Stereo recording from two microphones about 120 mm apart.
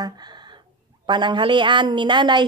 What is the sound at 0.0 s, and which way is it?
Speech, 35° right (ahead or behind).